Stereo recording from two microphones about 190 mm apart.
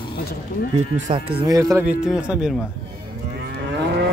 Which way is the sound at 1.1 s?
20° right (ahead or behind).